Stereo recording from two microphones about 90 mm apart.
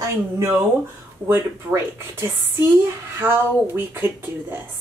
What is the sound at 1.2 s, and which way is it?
A woman's voice, 30° right (ahead or behind).